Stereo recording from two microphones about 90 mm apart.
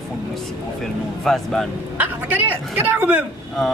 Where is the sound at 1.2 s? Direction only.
5° left (ahead or behind).